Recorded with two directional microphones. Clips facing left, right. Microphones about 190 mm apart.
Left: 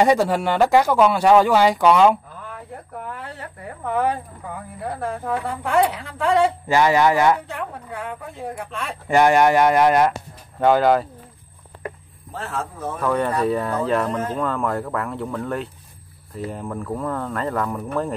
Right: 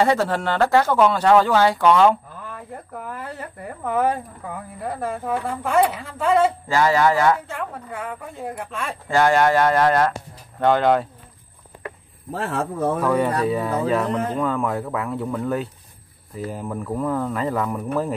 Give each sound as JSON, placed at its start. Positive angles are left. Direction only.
{"t": 0.0, "sound": "speech", "side_deg": 15}
{"t": 2.4, "sound": "speech", "side_deg": 0}
{"t": 6.7, "sound": "speech", "side_deg": 20}
{"t": 7.5, "sound": "speech", "side_deg": 0}
{"t": 9.0, "sound": "speech", "side_deg": 15}
{"t": 10.6, "sound": "speech", "side_deg": 5}
{"t": 12.3, "sound": "speech", "side_deg": -60}
{"t": 13.0, "sound": "speech", "side_deg": 0}